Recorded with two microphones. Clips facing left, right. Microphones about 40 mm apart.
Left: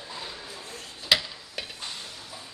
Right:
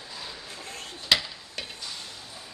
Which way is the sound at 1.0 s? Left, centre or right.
Centre.